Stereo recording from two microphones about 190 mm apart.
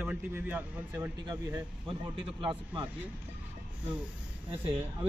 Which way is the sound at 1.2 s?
25° right (ahead or behind).